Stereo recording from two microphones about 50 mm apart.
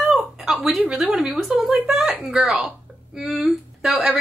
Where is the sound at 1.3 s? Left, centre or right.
Centre.